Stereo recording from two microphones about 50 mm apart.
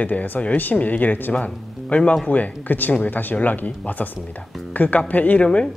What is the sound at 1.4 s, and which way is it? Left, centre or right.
Speech, left.